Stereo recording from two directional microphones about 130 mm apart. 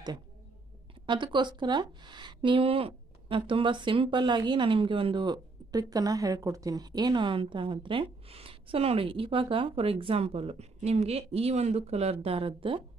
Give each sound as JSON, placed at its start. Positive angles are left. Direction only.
{"t": 1.0, "sound": "speech", "side_deg": -35}